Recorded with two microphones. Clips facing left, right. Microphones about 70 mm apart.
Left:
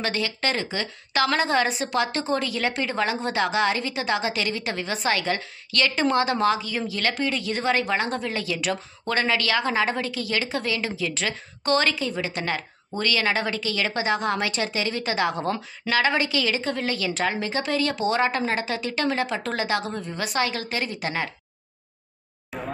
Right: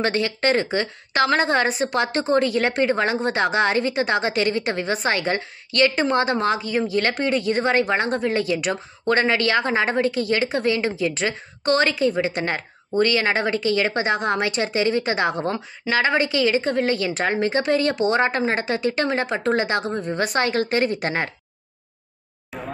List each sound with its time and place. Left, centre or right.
0.0 s a woman's voice: right
20.0 s a woman's voice: right
22.5 s a sound: centre